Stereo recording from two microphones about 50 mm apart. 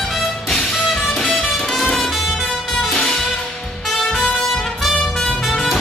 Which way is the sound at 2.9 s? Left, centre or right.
Centre.